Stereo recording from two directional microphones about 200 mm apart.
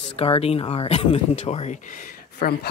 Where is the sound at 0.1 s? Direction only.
30° left (ahead or behind).